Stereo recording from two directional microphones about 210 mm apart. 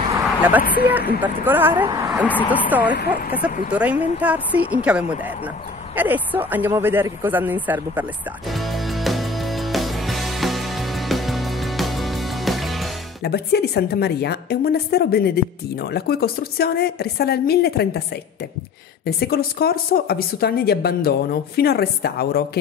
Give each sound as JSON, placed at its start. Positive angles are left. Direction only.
{"t": 0.4, "sound": "speech", "side_deg": -10}
{"t": 2.2, "sound": "speech", "side_deg": 10}
{"t": 2.7, "sound": "speech", "side_deg": -10}
{"t": 5.9, "sound": "a sound", "side_deg": -10}
{"t": 13.2, "sound": "a woman's voice", "side_deg": 50}